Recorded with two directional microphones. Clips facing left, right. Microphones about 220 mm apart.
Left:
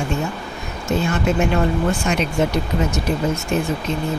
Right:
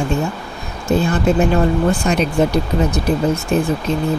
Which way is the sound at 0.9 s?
35° right (ahead or behind).